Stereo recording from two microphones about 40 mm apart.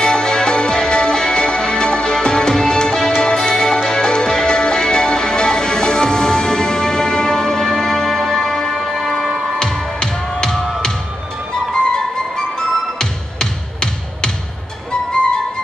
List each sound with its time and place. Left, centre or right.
0.0 s music: centre
12.5 s music: centre